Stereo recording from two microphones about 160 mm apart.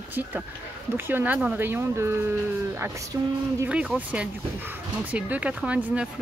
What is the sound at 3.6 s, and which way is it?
Speech, 5° right (ahead or behind).